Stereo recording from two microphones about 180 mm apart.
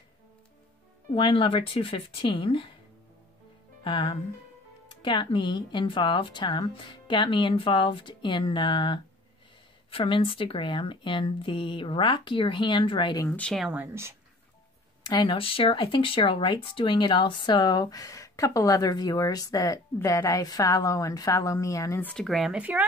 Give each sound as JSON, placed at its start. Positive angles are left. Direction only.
{"t": 1.1, "sound": "speech", "side_deg": 25}
{"t": 3.8, "sound": "speech", "side_deg": 25}
{"t": 13.4, "sound": "speech", "side_deg": 0}
{"t": 15.0, "sound": "speech", "side_deg": 25}
{"t": 22.1, "sound": "speech", "side_deg": 0}